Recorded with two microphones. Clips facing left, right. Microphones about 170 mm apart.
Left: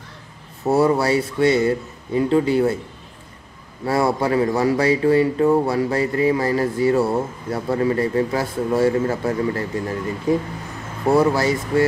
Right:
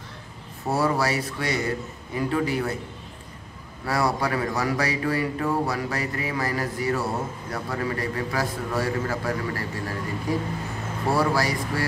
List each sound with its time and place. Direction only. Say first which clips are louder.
0.7 s speech: left 7 dB; 25° left (ahead or behind)
3.8 s speech: left 5 dB; 25° left (ahead or behind)